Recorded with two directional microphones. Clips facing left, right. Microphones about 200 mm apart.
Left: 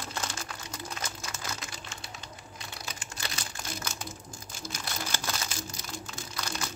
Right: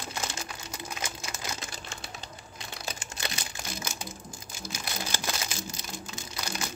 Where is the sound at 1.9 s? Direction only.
30° right (ahead or behind).